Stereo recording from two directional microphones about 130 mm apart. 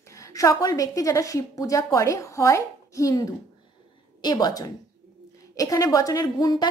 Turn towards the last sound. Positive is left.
turn(degrees=30)  # may be behind; listen again after turning